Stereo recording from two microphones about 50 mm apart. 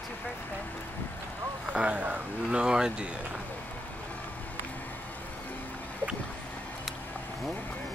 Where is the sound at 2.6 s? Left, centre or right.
Centre.